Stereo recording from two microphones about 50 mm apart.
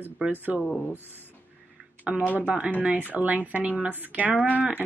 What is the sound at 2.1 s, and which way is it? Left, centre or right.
Speech, centre.